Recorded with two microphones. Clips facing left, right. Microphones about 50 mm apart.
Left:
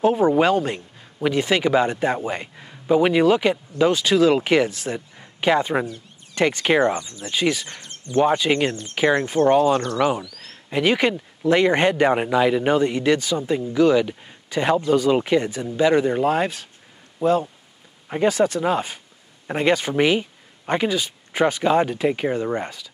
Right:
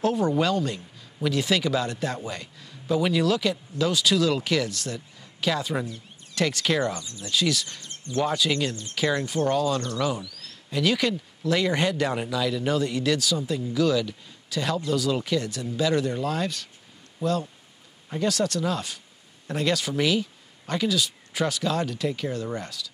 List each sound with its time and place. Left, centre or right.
0.0 s speech: centre
0.4 s a man's voice: left
2.2 s a man's voice: left
18.3 s speech: centre